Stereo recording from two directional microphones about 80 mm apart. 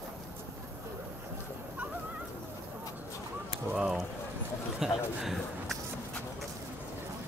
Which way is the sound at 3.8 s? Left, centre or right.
Centre.